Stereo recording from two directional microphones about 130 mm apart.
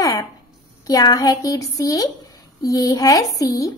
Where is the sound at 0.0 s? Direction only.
25° left (ahead or behind).